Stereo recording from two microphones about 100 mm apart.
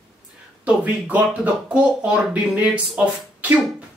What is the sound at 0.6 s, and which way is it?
Speech, 15° right (ahead or behind).